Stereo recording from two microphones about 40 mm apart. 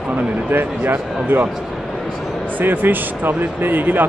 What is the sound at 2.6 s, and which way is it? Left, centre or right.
Speech, right.